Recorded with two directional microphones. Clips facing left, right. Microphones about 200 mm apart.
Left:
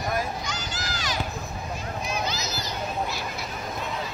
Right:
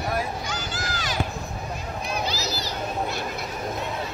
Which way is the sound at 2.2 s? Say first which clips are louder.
Right 2 dB; 35° right (ahead or behind).